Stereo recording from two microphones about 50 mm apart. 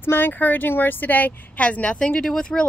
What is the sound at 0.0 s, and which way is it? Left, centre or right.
Speech, left.